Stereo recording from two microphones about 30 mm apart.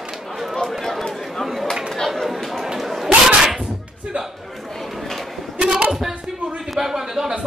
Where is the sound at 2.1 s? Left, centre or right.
Centre.